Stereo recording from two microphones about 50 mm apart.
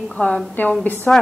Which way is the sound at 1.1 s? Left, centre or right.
Left.